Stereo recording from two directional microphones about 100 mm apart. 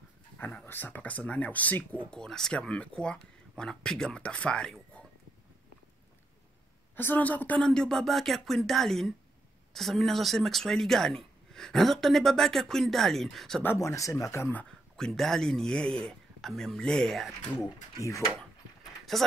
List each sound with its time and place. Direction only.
0.4 s speech: 15° left (ahead or behind)
7.0 s speech: 20° left (ahead or behind); by 13.6 s centre (ahead or behind)
13.7 s speech: 35° left (ahead or behind)
14.6 s speech: 5° left (ahead or behind)
18.0 s speech: 30° left (ahead or behind)
19.1 s speech: centre (ahead or behind)